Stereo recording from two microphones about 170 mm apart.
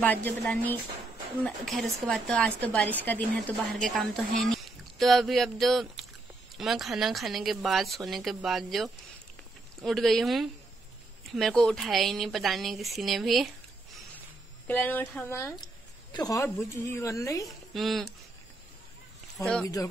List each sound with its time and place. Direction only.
0.0 s a woman's voice: 10° left (ahead or behind)
14.7 s a woman's voice: 10° left (ahead or behind)
17.5 s speech: centre (ahead or behind)
19.4 s speech: 20° left (ahead or behind)